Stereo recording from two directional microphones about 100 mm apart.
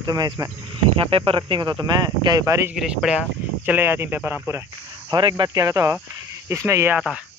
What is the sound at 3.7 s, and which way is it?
Speech, 20° right (ahead or behind).